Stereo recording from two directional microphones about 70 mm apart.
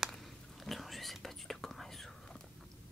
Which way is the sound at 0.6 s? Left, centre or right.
Centre.